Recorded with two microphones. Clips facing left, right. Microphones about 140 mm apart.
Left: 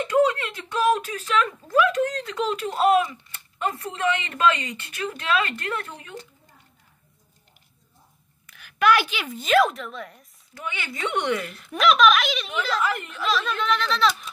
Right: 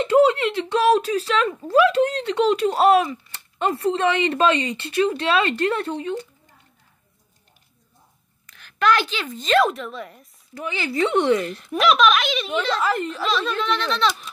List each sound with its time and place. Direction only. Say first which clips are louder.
0.0 s speech: right 5 dB; 30° right (ahead or behind)
8.5 s a woman's voice: even; 10° left (ahead or behind)
10.6 s speech: right 8 dB; 30° right (ahead or behind)
11.8 s speech: even; centre (ahead or behind)
12.5 s speech: right 4 dB; 30° right (ahead or behind)
13.3 s speech: left 1 dB; centre (ahead or behind)